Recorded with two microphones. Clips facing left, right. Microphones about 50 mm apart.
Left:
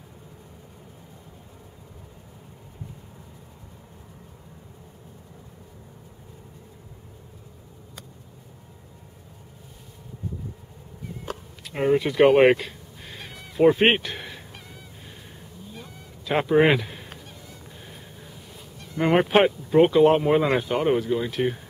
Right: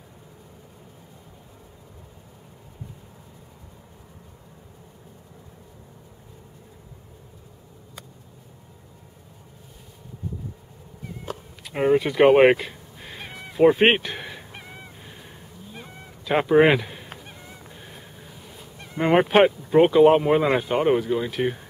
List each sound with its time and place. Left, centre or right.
11.6 s speech: centre
14.5 s honk: right
16.3 s speech: centre
17.3 s goose: right
17.6 s a sound: centre
18.9 s speech: centre